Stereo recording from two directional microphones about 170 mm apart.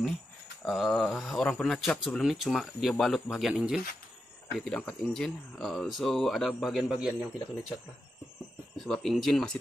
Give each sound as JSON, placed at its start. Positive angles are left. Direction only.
{"t": 0.7, "sound": "speech", "side_deg": 0}
{"t": 8.7, "sound": "speech", "side_deg": 5}